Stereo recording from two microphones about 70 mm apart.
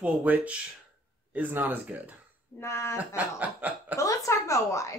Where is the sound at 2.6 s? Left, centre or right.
Left.